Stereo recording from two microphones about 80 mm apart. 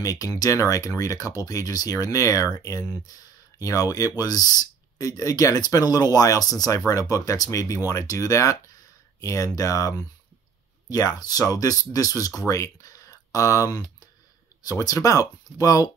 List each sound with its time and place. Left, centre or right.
0.0 s speech: left